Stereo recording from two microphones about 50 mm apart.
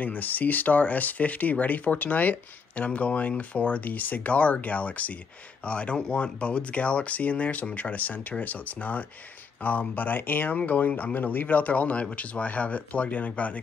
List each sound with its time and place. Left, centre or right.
0.0 s speech: left